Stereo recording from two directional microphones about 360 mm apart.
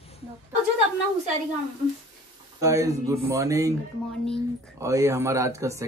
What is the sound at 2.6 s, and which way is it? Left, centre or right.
A man's voice, centre.